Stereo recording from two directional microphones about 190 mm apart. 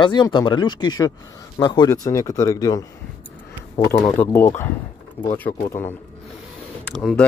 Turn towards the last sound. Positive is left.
turn(degrees=5)  # may be behind; listen again after turning